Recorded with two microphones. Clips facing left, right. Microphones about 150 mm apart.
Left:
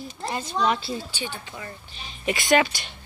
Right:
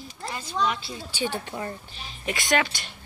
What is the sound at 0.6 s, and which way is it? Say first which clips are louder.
Speech: left 4 dB; 35° left (ahead or behind).